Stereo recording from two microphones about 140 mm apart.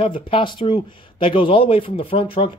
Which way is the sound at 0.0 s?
40° left (ahead or behind).